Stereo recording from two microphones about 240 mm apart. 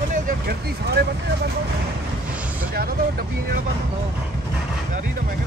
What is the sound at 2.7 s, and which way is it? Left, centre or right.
Speech, right.